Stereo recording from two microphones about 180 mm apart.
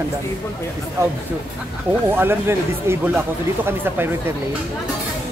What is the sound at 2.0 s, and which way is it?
Speech, 10° right (ahead or behind).